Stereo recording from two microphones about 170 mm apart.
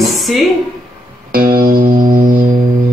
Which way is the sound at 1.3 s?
60° right (ahead or behind).